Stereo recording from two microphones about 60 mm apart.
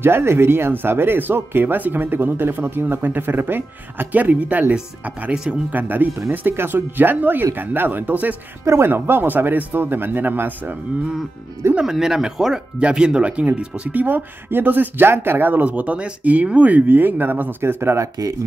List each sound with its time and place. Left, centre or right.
0.0 s speech: right
5.3 s speech: centre
5.7 s speech: right
8.6 s speech: right
11.8 s speech: centre
13.9 s speech: right